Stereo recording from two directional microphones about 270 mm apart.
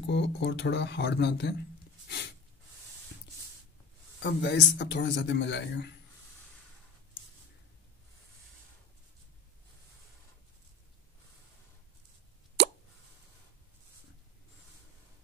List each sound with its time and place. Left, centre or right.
0.0 s speech: left
2.0 s a sound: left
4.2 s speech: left